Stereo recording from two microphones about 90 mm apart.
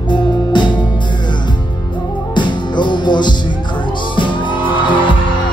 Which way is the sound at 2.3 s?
60° left (ahead or behind).